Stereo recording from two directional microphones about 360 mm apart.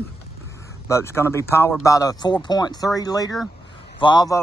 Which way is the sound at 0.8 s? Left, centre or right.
Centre.